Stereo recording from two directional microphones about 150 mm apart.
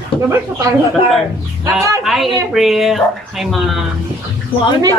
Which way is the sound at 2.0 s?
Centre (ahead or behind).